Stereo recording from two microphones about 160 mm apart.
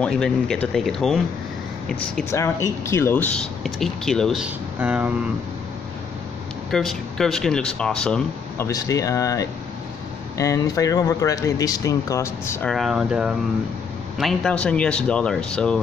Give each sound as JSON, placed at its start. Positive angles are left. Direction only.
{"t": 0.0, "sound": "speech", "side_deg": 5}
{"t": 2.3, "sound": "speech", "side_deg": 15}
{"t": 3.6, "sound": "speech", "side_deg": 0}
{"t": 6.7, "sound": "speech", "side_deg": 0}
{"t": 8.6, "sound": "speech", "side_deg": 20}
{"t": 12.6, "sound": "speech", "side_deg": 0}